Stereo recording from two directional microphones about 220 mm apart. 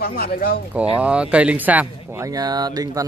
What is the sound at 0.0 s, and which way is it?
Speech, 45° left (ahead or behind).